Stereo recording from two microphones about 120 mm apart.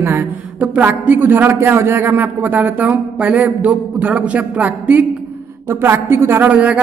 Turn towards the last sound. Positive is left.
turn(degrees=-10)  # may be behind; listen again after turning